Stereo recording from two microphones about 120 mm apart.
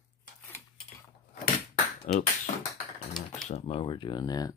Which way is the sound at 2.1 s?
90° left.